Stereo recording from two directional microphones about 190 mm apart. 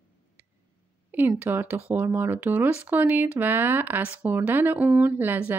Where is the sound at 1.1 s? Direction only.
10° right (ahead or behind).